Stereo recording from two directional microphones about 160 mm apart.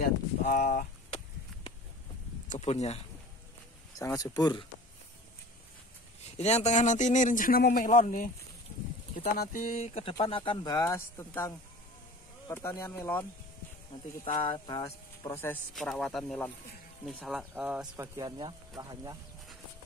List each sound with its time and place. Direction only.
0.0 s speech: 65° left (ahead or behind)
2.5 s speech: 45° left (ahead or behind)
4.2 s speech: 25° left (ahead or behind)
6.3 s speech: 45° left (ahead or behind)
9.4 s speech: 60° left (ahead or behind); by 13.3 s 15° left (ahead or behind)
14.2 s speech: 35° left (ahead or behind)
15.2 s speech: 15° left (ahead or behind)
15.7 s speech: centre (ahead or behind); by 19.1 s 25° right (ahead or behind)